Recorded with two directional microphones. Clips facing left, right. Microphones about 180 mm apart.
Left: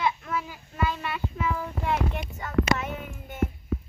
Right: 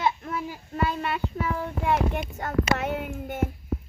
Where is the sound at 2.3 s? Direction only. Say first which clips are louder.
Left 2 dB; 50° right (ahead or behind).